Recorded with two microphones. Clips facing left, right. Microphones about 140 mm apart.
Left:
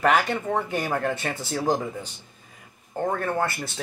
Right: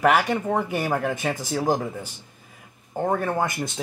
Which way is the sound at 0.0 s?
10° right (ahead or behind).